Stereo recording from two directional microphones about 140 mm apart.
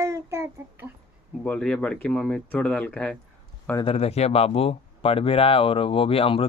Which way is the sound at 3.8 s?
45° left (ahead or behind).